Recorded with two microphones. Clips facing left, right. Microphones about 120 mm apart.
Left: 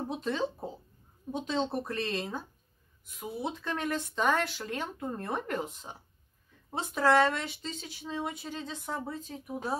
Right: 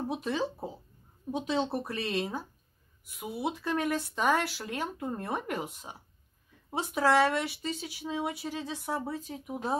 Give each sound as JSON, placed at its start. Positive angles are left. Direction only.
{"t": 0.1, "sound": "speech", "side_deg": -5}